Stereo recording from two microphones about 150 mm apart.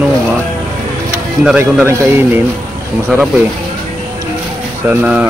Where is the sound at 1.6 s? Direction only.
15° right (ahead or behind).